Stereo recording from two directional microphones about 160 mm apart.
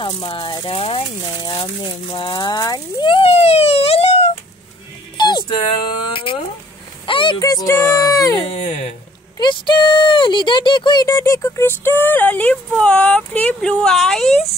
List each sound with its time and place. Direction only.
0.0 s speech: 30° left (ahead or behind)
5.1 s music: 30° left (ahead or behind)
7.1 s speech: 30° left (ahead or behind)
8.5 s speech: 40° left (ahead or behind)
9.4 s speech: 30° left (ahead or behind); by 14.4 s 5° left (ahead or behind)